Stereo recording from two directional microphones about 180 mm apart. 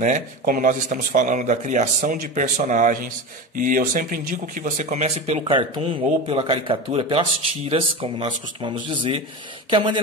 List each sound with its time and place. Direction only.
0.0 s speech: 45° right (ahead or behind); by 9.9 s 25° right (ahead or behind)